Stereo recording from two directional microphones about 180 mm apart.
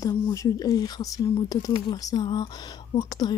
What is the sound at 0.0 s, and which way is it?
Speech, 15° left (ahead or behind).